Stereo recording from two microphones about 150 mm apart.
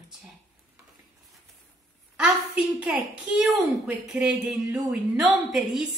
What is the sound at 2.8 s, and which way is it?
Speech, 5° right (ahead or behind).